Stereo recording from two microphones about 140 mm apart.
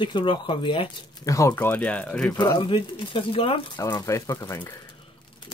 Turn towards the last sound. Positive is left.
turn(degrees=25)  # may be behind; listen again after turning